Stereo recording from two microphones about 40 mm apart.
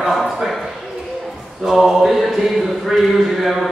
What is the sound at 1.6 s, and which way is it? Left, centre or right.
A man's voice, centre.